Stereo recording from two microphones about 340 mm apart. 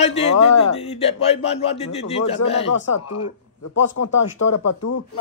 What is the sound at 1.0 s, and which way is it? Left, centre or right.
A man's voice, centre.